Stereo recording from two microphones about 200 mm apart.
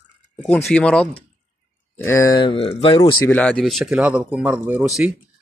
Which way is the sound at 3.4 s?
5° left (ahead or behind).